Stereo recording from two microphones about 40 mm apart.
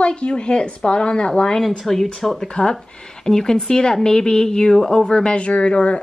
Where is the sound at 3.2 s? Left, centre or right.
Centre.